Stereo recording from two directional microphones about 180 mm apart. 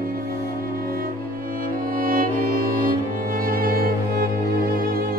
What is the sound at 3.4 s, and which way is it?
Music, 55° right (ahead or behind).